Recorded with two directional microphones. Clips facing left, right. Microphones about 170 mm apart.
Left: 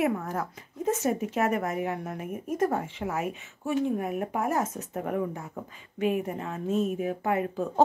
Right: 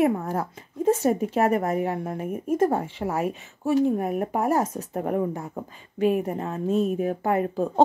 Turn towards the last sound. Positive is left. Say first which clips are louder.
# right 4 dB
turn(degrees=-35)  # may be behind; listen again after turning